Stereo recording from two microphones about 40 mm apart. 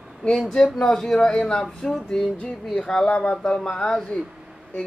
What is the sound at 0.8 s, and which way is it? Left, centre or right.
Speech, centre.